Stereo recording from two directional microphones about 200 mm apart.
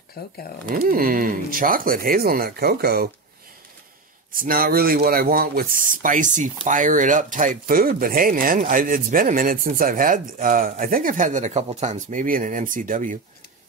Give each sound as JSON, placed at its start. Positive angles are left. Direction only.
{"t": 0.2, "sound": "speech", "side_deg": 50}
{"t": 0.7, "sound": "speech", "side_deg": -45}
{"t": 4.3, "sound": "speech", "side_deg": -45}